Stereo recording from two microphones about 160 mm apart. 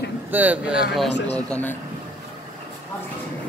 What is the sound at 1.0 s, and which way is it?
Speech, 90° left.